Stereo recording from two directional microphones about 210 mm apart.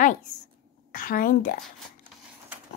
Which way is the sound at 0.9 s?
40° left (ahead or behind).